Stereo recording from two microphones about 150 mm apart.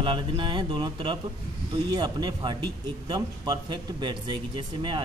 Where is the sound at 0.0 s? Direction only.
35° right (ahead or behind).